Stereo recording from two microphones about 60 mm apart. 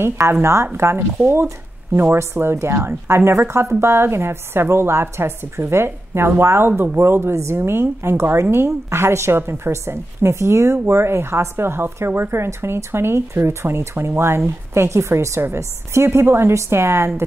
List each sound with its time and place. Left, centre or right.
0.0 s speech: right